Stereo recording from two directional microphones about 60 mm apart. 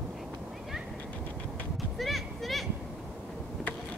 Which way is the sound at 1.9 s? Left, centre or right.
Centre.